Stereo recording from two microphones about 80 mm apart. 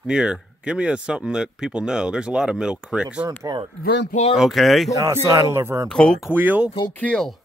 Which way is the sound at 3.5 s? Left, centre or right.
Right.